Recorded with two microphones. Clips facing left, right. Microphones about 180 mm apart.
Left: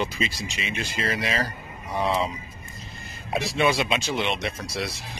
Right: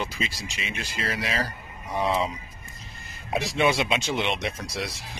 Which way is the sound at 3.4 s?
20° right (ahead or behind).